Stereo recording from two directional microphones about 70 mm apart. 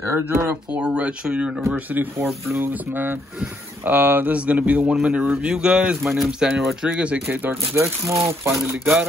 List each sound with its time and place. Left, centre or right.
0.0 s speech: right
0.7 s speech: centre
1.9 s speech: right; by 5.9 s centre
6.0 s speech: centre; by 7.5 s right
7.7 s speech: right